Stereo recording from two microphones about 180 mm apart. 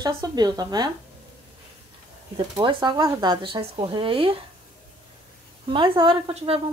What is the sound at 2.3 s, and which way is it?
Speech, 25° right (ahead or behind).